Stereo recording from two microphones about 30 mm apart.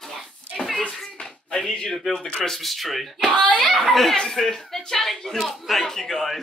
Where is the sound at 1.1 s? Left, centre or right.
Left.